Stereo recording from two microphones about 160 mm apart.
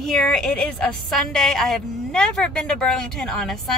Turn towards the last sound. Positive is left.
turn(degrees=0)  # may be behind; listen again after turning